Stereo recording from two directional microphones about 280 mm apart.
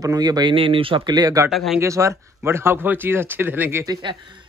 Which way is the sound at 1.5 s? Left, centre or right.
Centre.